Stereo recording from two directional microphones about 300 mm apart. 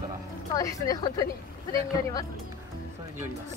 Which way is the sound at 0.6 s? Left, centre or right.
Centre.